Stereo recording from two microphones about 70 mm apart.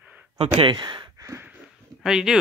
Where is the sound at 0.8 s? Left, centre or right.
Right.